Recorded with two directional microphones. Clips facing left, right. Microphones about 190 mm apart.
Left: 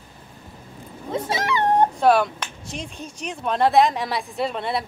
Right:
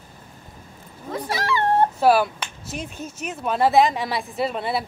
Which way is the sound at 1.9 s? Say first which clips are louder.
Even; 5° right (ahead or behind).